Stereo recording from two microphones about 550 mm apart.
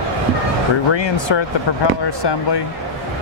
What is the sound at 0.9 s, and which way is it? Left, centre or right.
Speech, left.